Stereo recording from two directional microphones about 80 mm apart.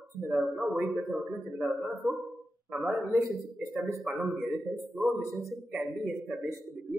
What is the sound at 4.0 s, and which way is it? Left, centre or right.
Speech, centre.